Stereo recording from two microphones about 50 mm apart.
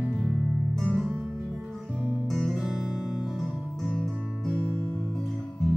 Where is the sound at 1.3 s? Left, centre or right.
Centre.